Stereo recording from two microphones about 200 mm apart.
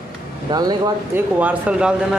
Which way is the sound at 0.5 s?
20° right (ahead or behind).